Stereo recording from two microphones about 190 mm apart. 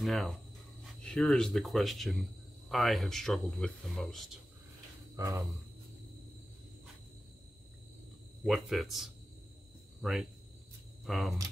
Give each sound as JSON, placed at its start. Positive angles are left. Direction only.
{"t": 0.0, "sound": "speech", "side_deg": 0}
{"t": 5.1, "sound": "speech", "side_deg": -20}
{"t": 8.5, "sound": "speech", "side_deg": 0}
{"t": 11.1, "sound": "speech", "side_deg": 0}